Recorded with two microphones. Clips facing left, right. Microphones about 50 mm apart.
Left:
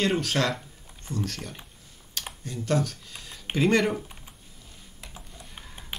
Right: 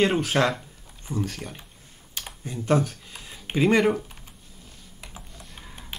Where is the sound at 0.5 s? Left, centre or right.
Centre.